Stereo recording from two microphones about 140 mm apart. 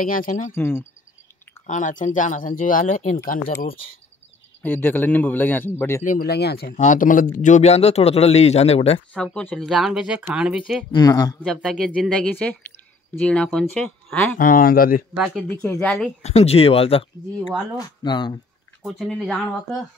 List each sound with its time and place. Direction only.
0.0 s speech: 90° left
0.6 s a man's voice: 15° left (ahead or behind)
1.7 s speech: 60° left (ahead or behind)
4.6 s a man's voice: 15° left (ahead or behind)
6.0 s speech: 80° left; by 9.0 s 45° left (ahead or behind)
9.1 s a man's voice: 10° left (ahead or behind)
9.7 s speech: centre (ahead or behind)
10.9 s speech: 30° left (ahead or behind)
11.4 s a man's voice: centre (ahead or behind)
14.4 s speech: 85° left
15.1 s speech: centre (ahead or behind)
16.2 s speech: 50° left (ahead or behind)
17.7 s speech: 30° left (ahead or behind)
18.8 s speech: 5° right (ahead or behind)